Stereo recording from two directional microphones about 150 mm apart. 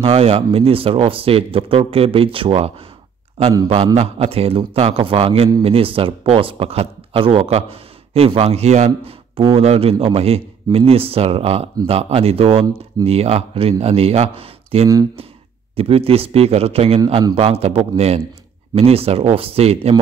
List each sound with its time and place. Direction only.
0.0 s a man's voice: 40° right (ahead or behind)